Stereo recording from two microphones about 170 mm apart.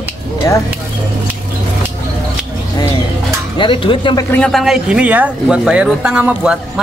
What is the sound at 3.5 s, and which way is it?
Speech, 30° left (ahead or behind).